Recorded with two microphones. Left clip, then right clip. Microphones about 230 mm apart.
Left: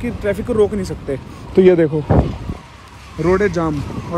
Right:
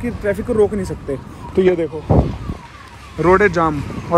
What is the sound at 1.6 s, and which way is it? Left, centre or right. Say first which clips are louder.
Speech: left 4 dB; left.